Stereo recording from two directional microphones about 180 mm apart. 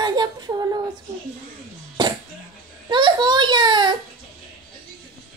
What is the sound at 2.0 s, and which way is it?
Cough, 25° right (ahead or behind).